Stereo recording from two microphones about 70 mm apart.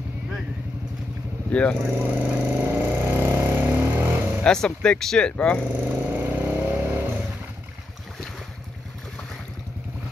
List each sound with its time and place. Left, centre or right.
1.5 s speech: centre
1.8 s speech: right
2.4 s vehicle: right
4.4 s speech: centre
5.7 s vehicle: right